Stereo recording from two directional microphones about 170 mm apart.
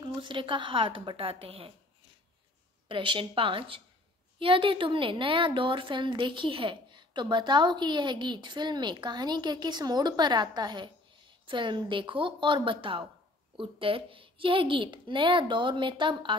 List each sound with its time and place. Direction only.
0.0 s a woman's voice: 30° right (ahead or behind)
2.9 s a woman's voice: 30° right (ahead or behind)